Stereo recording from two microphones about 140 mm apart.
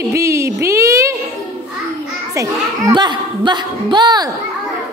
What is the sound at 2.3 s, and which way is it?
A woman's voice, 30° right (ahead or behind).